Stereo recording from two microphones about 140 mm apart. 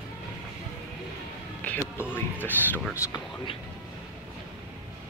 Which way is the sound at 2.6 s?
15° left (ahead or behind).